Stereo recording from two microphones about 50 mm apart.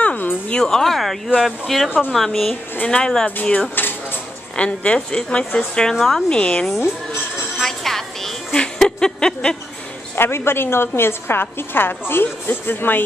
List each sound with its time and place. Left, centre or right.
0.0 s a sound: left
0.6 s speech: centre
2.8 s speech: centre
3.7 s dishes: left
4.6 s a woman's voice: left; by 6.2 s centre
6.2 s speech: centre
7.6 s music: centre
8.7 s a sound: centre
10.1 s a woman's voice: left